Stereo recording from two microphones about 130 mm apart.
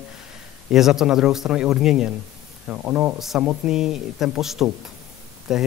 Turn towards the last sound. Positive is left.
turn(degrees=-5)  # may be behind; listen again after turning